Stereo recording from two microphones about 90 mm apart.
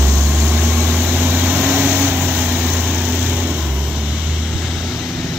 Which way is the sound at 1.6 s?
20° right (ahead or behind).